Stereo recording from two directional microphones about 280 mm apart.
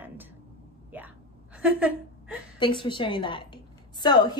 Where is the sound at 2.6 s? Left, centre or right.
Centre.